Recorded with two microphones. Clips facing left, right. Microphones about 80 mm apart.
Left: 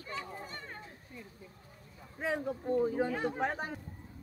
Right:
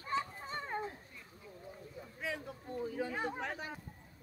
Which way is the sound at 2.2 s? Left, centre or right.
Left.